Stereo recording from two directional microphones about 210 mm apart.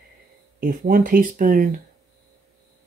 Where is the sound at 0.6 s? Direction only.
40° right (ahead or behind).